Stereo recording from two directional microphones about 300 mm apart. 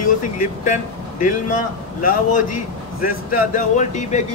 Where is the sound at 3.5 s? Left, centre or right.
Left.